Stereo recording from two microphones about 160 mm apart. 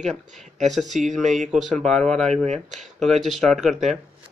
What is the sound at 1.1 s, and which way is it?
Speech, 50° right (ahead or behind).